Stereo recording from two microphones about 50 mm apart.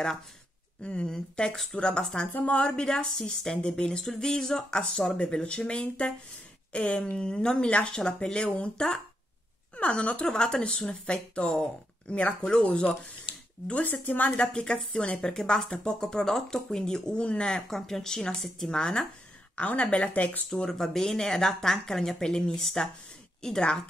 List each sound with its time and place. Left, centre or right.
0.8 s speech: left
2.3 s speech: left
2.7 s speech: centre
4.0 s speech: centre
9.8 s speech: left
12.4 s speech: centre
14.3 s speech: centre
17.6 s speech: centre
19.5 s speech: left
20.4 s speech: centre